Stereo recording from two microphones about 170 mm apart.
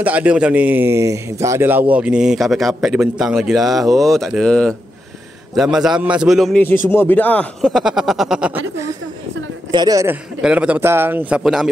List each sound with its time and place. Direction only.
0.0 s a man's voice: 10° right (ahead or behind)
6.9 s a man's voice: 10° left (ahead or behind); by 8.9 s 15° right (ahead or behind)
9.7 s a man's voice: 25° right (ahead or behind)
10.4 s a man's voice: 5° right (ahead or behind)